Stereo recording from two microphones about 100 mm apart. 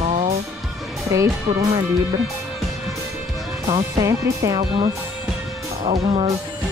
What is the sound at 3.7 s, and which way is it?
Music, 35° right (ahead or behind).